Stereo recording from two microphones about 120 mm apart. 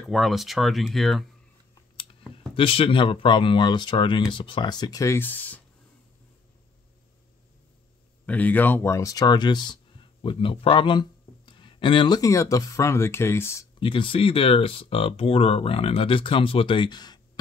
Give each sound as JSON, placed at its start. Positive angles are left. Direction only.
{"t": 0.1, "sound": "speech", "side_deg": 0}
{"t": 2.5, "sound": "speech", "side_deg": 50}
{"t": 8.3, "sound": "speech", "side_deg": 15}
{"t": 12.2, "sound": "speech", "side_deg": 25}
{"t": 13.7, "sound": "speech", "side_deg": 45}